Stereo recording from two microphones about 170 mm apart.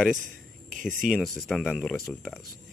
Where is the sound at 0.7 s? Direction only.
50° right (ahead or behind).